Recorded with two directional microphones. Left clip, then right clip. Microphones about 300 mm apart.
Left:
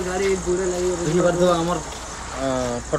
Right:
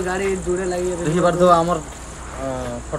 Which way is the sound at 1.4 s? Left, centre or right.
Centre.